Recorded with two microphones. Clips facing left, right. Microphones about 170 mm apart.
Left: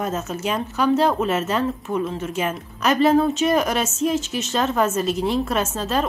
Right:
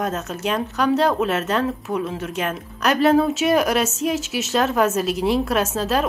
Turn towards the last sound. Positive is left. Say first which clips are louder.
# right 2 dB
turn(degrees=0)  # may be behind; listen again after turning